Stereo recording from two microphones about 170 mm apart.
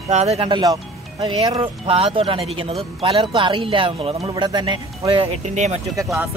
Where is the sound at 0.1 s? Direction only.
40° right (ahead or behind).